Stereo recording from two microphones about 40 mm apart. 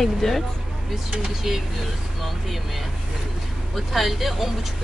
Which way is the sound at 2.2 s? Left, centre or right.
Centre.